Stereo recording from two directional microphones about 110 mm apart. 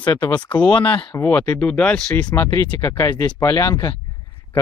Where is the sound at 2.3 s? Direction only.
20° left (ahead or behind).